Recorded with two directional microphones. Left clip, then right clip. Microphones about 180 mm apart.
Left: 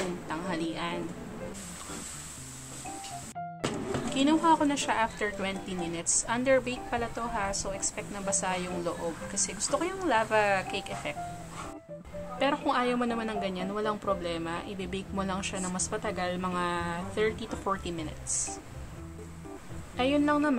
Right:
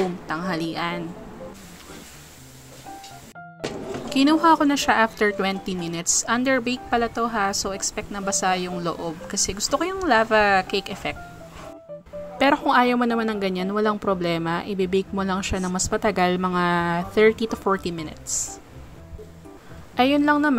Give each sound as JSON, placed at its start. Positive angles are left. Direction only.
{"t": 0.3, "sound": "a woman's voice", "side_deg": -30}
{"t": 4.1, "sound": "a woman's voice", "side_deg": -35}
{"t": 12.4, "sound": "a woman's voice", "side_deg": -40}
{"t": 20.0, "sound": "a woman's voice", "side_deg": -35}